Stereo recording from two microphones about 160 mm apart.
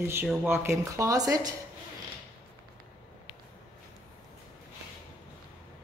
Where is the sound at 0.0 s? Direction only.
15° right (ahead or behind).